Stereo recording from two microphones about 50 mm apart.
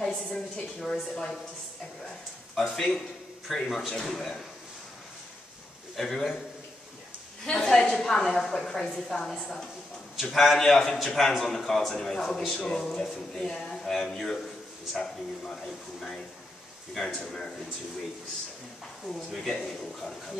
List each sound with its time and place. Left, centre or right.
0.0 s a woman's voice: centre
2.5 s a man's voice: centre
5.9 s a man's voice: centre
7.4 s a man's voice: centre
12.6 s a man's voice: centre
19.0 s a man's voice: centre